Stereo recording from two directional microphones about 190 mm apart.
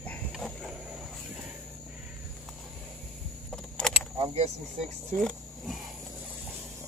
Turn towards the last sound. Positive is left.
turn(degrees=0)  # may be behind; listen again after turning